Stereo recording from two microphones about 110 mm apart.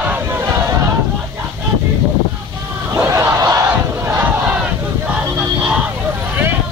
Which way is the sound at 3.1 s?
25° right (ahead or behind).